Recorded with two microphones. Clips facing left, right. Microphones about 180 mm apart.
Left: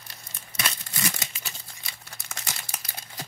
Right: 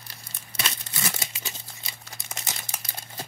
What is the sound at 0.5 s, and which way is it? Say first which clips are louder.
Crumpling: left 1 dB; 30° right (ahead or behind).